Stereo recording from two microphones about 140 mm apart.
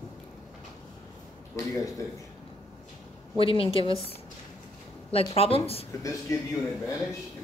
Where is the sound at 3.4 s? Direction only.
40° left (ahead or behind).